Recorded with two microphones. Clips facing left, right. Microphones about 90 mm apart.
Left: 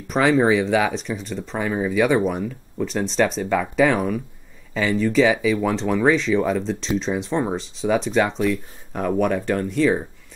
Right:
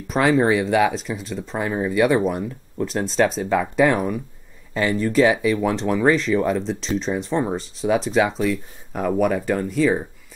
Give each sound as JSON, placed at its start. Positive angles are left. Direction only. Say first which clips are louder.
{"t": 0.1, "sound": "speech", "louder": "even", "side_deg": 0}